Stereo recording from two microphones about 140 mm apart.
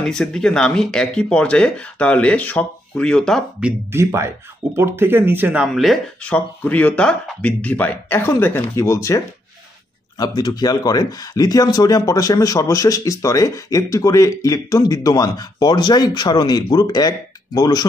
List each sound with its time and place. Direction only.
0.0 s speech: 5° left (ahead or behind)
3.9 s speech: 20° right (ahead or behind)
5.8 s speech: 5° left (ahead or behind); by 17.8 s 25° left (ahead or behind)